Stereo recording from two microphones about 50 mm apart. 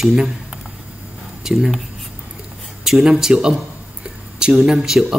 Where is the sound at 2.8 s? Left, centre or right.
Centre.